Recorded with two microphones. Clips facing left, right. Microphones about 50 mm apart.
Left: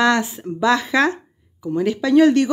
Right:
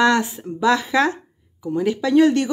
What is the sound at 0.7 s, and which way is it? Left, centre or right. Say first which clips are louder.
Speech: left 2 dB; left.